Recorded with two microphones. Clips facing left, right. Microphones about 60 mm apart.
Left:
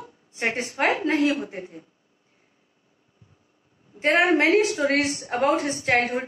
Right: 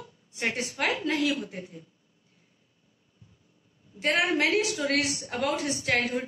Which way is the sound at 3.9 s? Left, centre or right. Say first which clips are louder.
Left 6 dB; left.